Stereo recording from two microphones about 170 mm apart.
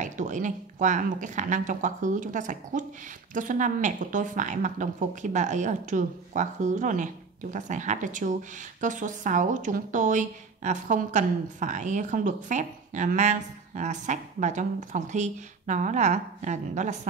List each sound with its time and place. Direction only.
0.0 s a woman's voice: 45° right (ahead or behind)